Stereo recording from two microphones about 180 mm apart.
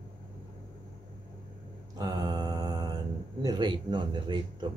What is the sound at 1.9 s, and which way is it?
Mantra, 20° right (ahead or behind).